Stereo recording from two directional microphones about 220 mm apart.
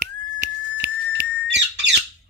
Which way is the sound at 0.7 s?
50° right (ahead or behind).